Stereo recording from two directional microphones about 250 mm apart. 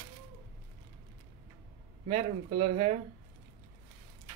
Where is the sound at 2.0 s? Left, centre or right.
Right.